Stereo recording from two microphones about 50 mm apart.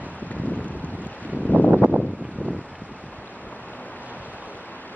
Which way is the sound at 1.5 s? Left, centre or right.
Right.